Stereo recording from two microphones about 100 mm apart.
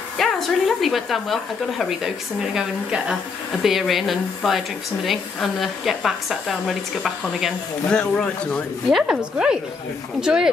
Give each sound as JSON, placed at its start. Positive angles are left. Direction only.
{"t": 0.2, "sound": "speech", "side_deg": 0}
{"t": 8.9, "sound": "a woman's voice", "side_deg": -10}